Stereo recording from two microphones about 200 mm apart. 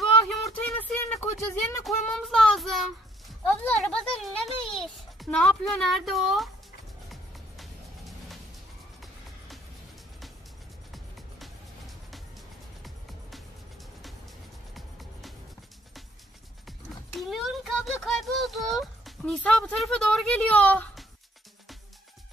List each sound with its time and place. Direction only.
0.3 s a sound: centre (ahead or behind)
1.9 s child singing: centre (ahead or behind)
3.4 s a child's voice: 5° left (ahead or behind)
7.1 s music: centre (ahead or behind)
10.9 s music: centre (ahead or behind)
14.8 s music: centre (ahead or behind)
16.6 s a sound: centre (ahead or behind)